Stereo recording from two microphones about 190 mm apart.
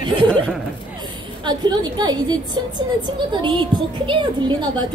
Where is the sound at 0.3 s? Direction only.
5° left (ahead or behind).